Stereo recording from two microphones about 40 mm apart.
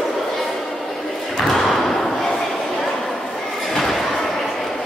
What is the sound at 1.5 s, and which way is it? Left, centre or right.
Thump, centre.